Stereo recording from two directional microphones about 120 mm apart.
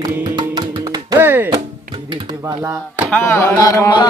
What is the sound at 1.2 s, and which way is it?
Music, 15° right (ahead or behind).